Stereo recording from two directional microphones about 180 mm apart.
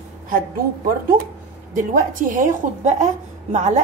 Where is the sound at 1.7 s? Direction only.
45° right (ahead or behind).